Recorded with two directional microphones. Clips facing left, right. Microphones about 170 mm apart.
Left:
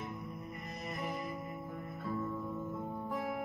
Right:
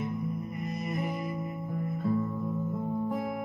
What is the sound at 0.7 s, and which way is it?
Music, 10° right (ahead or behind).